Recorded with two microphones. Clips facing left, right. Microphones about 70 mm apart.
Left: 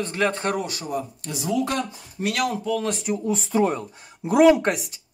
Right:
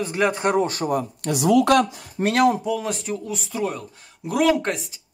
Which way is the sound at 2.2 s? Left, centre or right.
Right.